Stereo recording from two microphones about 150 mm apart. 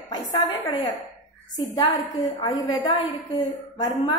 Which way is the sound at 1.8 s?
30° left (ahead or behind).